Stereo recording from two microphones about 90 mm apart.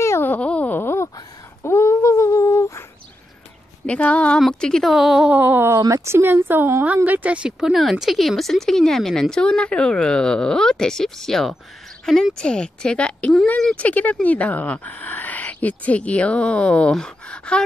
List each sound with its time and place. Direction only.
0.0 s wail: 30° left (ahead or behind)
0.3 s wail: 15° left (ahead or behind)
1.6 s humming: 30° left (ahead or behind)
3.8 s speech: 15° left (ahead or behind)
4.9 s speech: 5° right (ahead or behind)
5.3 s speech: 20° right (ahead or behind)
5.8 s speech: 35° right (ahead or behind); by 17.6 s 10° left (ahead or behind)